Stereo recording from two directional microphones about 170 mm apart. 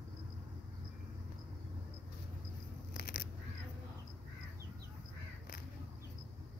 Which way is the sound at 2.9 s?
60° left (ahead or behind).